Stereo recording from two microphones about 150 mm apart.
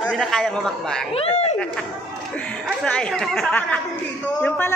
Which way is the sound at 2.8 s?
5° left (ahead or behind).